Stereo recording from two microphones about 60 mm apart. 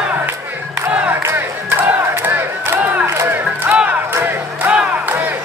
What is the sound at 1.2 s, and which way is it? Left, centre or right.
Crowd, right.